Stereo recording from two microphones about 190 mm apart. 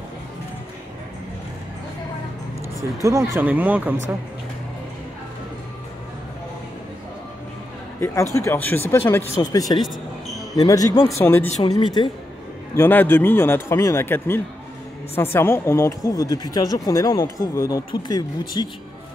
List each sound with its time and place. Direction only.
3.0 s speech: 15° right (ahead or behind)
8.0 s speech: 15° left (ahead or behind)
11.4 s speech: 35° left (ahead or behind)
11.7 s speech: 25° left (ahead or behind)
12.7 s speech: 10° left (ahead or behind)